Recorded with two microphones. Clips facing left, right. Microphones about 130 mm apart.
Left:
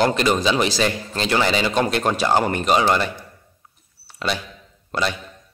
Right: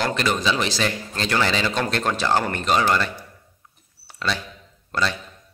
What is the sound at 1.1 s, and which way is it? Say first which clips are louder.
A man's voice: left 3 dB; 15° left (ahead or behind).